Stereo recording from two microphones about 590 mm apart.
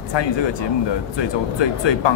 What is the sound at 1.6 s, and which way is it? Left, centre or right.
Speech, left.